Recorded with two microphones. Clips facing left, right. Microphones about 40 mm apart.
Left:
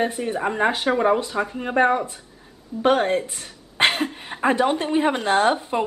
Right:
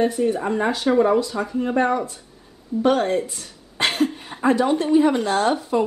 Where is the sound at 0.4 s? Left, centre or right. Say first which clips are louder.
Left 1 dB; left.